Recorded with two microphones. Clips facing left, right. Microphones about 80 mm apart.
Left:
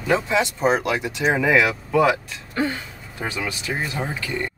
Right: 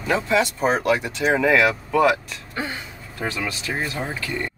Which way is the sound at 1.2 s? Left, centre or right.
Centre.